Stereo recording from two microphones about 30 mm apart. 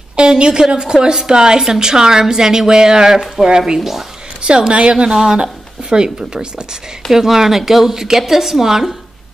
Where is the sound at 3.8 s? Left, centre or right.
Centre.